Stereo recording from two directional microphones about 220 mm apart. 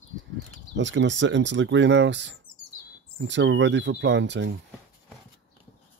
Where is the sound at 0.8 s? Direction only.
55° right (ahead or behind).